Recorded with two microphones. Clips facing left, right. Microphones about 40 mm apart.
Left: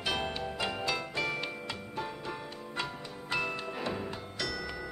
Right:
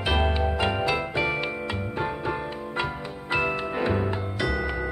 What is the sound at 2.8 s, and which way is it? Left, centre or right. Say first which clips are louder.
Music: right 7 dB; right.